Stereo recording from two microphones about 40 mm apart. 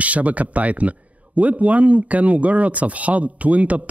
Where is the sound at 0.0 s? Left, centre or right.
Right.